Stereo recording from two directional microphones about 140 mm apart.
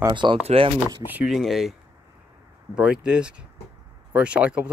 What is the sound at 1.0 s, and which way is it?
Speech, 10° right (ahead or behind).